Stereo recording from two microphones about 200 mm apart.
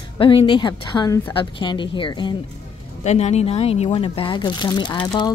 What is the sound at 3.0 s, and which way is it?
Speech, 35° left (ahead or behind).